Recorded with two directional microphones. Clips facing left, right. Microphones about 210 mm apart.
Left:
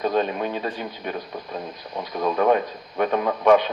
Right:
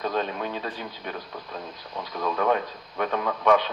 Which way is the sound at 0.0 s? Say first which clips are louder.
Left 5 dB; 15° left (ahead or behind).